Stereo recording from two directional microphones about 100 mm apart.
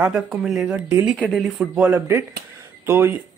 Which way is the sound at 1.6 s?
15° right (ahead or behind).